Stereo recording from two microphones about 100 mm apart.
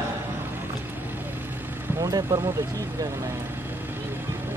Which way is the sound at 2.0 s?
40° right (ahead or behind).